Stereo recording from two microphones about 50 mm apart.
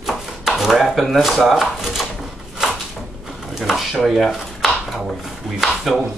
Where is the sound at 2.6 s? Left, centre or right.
Centre.